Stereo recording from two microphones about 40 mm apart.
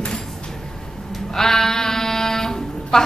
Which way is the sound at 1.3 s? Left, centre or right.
Centre.